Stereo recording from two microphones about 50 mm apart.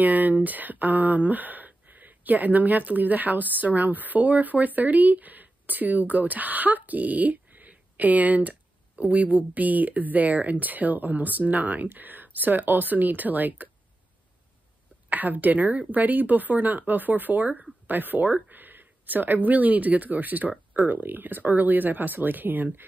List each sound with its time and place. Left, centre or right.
0.0 s speech: right
15.0 s speech: right